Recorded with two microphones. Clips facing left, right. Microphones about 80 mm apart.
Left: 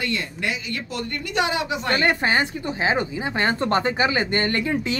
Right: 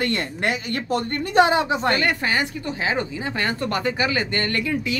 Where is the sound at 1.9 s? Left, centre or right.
Left.